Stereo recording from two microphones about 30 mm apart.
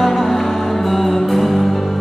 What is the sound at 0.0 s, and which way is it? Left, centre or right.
Music, centre.